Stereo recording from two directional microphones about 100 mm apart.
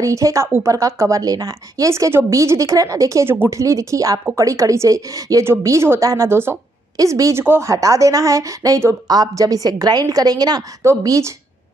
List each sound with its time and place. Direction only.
0.0 s a woman's voice: 30° right (ahead or behind)
7.0 s a woman's voice: 35° right (ahead or behind)